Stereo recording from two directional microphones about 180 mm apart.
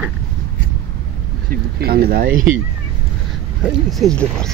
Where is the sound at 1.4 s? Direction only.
55° right (ahead or behind).